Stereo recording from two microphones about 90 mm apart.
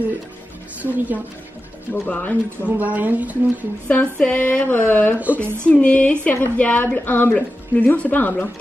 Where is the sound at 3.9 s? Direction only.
15° left (ahead or behind).